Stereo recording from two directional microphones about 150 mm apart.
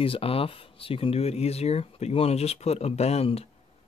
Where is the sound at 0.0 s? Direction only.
40° left (ahead or behind).